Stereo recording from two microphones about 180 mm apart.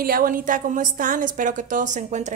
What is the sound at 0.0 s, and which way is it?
A woman's voice, 50° right (ahead or behind).